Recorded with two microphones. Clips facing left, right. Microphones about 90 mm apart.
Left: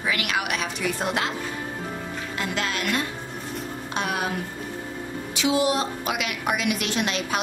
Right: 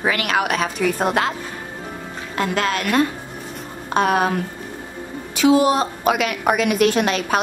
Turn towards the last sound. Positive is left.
turn(degrees=-45)  # may be behind; listen again after turning